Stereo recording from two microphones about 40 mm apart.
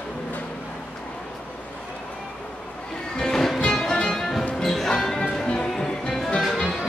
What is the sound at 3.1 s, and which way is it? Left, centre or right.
Music, centre.